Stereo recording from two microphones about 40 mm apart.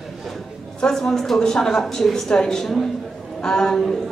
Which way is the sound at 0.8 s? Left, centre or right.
Centre.